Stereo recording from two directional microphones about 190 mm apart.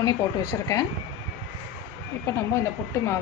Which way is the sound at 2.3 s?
15° left (ahead or behind).